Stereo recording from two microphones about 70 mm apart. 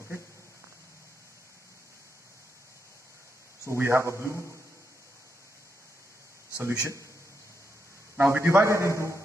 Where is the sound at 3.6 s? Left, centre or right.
Right.